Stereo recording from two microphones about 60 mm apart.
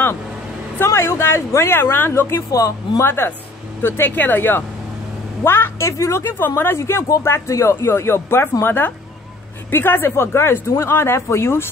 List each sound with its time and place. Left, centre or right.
0.7 s speech: left
2.3 s speech: left
6.2 s speech: left
7.7 s speech: left